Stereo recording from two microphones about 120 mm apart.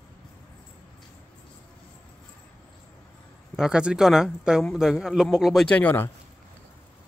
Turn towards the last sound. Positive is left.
turn(degrees=15)  # may be behind; listen again after turning